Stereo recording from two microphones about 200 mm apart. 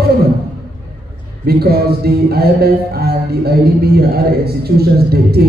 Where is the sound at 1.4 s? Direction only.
50° right (ahead or behind).